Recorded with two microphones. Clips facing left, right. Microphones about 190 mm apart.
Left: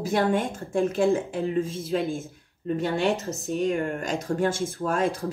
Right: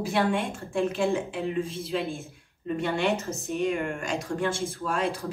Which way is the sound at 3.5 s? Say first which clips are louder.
Left 2 dB; 35° left (ahead or behind).